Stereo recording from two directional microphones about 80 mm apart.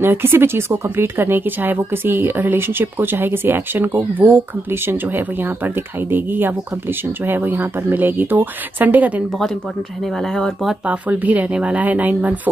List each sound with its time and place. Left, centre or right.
0.0 s speech: right
10.1 s speech: centre
10.9 s speech: centre